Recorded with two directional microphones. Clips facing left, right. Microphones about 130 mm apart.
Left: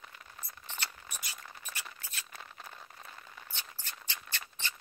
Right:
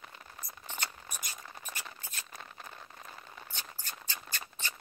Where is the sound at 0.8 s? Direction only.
45° right (ahead or behind).